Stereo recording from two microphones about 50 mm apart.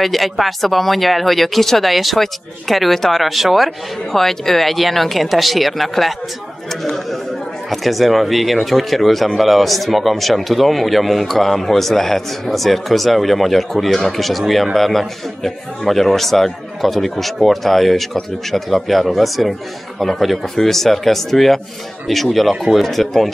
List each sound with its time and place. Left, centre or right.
0.0 s a man's voice: centre